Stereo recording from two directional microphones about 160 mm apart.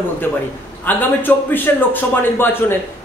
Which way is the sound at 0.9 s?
10° left (ahead or behind).